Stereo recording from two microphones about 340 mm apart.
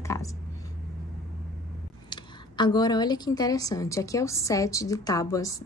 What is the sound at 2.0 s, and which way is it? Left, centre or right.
A woman's voice, centre.